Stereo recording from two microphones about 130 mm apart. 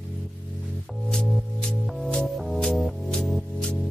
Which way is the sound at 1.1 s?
5° left (ahead or behind).